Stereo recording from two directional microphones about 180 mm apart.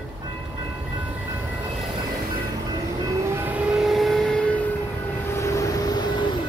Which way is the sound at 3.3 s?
10° right (ahead or behind).